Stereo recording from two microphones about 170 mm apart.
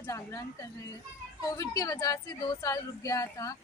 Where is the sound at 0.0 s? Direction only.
15° left (ahead or behind).